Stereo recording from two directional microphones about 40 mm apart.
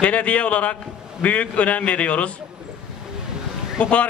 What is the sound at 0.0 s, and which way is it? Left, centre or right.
A man's voice, left.